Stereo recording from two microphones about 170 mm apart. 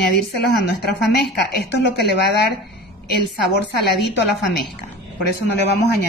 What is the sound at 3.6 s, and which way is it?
Speech, 90° left.